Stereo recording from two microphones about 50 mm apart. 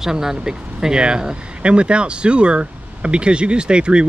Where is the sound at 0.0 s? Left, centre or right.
Centre.